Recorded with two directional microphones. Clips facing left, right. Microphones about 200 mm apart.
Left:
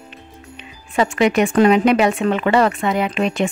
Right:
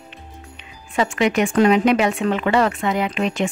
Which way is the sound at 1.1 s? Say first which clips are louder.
Left 3 dB; 35° left (ahead or behind).